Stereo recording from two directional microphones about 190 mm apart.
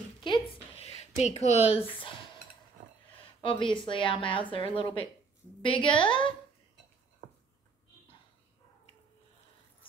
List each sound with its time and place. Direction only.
0.2 s a sound: 30° left (ahead or behind)
1.2 s speech: 35° left (ahead or behind)
3.3 s a woman's voice: 25° left (ahead or behind)